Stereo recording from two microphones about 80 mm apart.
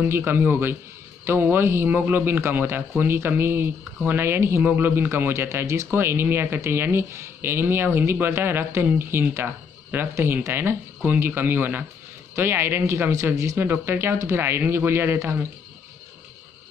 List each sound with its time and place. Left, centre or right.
0.0 s speech: right
13.1 s speech: right
13.6 s speech: right